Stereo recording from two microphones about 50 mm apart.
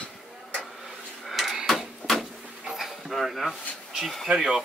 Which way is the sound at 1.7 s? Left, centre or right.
Centre.